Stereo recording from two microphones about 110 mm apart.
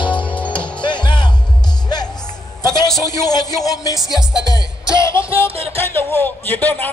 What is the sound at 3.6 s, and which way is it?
Music, 30° left (ahead or behind).